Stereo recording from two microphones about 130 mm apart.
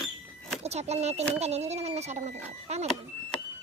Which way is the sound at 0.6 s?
55° right (ahead or behind).